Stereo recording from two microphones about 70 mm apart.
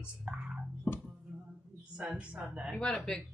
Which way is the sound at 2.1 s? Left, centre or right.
Centre.